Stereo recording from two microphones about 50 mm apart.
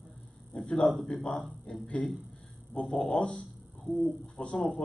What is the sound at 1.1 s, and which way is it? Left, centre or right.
A man's voice, centre.